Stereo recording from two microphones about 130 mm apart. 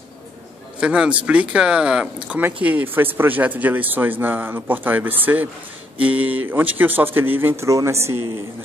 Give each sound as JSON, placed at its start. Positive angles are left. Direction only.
{"t": 0.7, "sound": "speech", "side_deg": -5}